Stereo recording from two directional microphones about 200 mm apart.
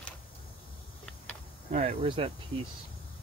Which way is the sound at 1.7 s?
35° right (ahead or behind).